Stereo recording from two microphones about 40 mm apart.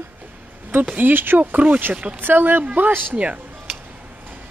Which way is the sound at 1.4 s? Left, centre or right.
Right.